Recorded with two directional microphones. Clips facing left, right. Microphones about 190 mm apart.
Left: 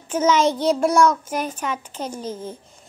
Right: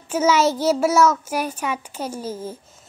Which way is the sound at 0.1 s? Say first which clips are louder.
Even; 10° right (ahead or behind).